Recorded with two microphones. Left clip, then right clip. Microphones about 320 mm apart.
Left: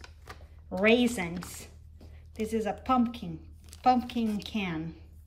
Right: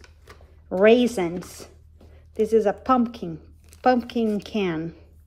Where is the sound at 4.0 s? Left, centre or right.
Centre.